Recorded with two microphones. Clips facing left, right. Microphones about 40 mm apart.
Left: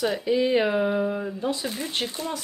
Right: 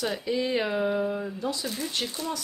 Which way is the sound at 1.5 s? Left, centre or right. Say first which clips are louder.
Left 2 dB; left.